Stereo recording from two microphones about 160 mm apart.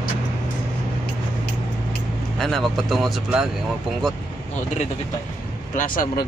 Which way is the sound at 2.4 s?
Centre (ahead or behind).